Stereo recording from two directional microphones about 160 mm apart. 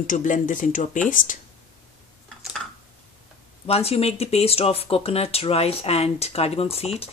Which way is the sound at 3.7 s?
40° left (ahead or behind).